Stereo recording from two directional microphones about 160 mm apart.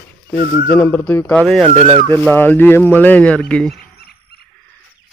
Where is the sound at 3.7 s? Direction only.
80° left.